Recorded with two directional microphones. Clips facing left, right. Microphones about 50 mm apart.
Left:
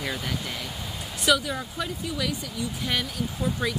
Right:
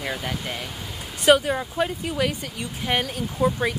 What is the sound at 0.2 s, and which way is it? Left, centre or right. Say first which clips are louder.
Speech: right 2 dB; right.